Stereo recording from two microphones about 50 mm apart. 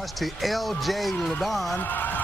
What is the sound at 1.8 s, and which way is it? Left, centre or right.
Speech, left.